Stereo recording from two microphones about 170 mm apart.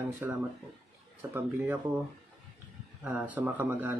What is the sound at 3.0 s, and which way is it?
Speech, 10° right (ahead or behind).